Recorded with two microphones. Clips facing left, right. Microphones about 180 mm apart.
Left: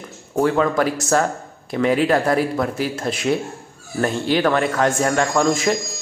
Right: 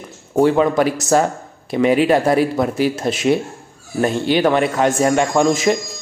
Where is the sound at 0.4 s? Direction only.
20° right (ahead or behind).